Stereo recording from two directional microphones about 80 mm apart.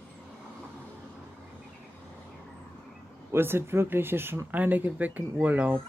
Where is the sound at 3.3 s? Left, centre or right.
Right.